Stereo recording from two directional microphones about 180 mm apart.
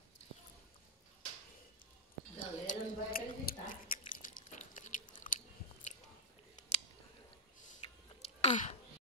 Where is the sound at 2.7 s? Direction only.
55° left (ahead or behind).